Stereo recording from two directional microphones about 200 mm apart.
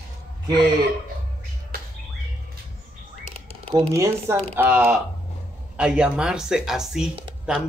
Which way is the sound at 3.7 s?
15° right (ahead or behind).